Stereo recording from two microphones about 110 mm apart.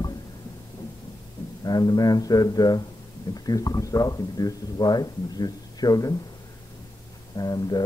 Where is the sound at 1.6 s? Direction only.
35° left (ahead or behind).